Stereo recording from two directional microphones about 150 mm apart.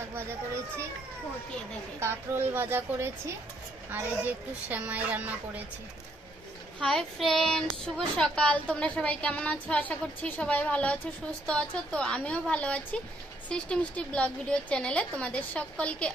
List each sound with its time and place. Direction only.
2.0 s a woman's voice: 15° right (ahead or behind)
4.6 s a woman's voice: 10° right (ahead or behind)
6.8 s speech: 5° left (ahead or behind)